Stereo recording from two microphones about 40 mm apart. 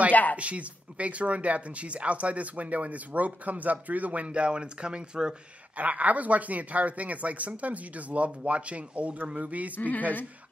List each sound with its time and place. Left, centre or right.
0.1 s speech: left
0.4 s speech: right
5.8 s speech: right
9.8 s speech: left